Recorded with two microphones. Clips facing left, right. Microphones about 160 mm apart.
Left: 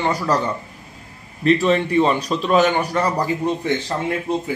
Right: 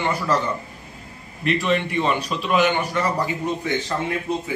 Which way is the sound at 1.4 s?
35° left (ahead or behind).